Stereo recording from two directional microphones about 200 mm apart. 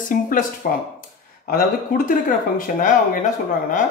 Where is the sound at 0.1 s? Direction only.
40° left (ahead or behind).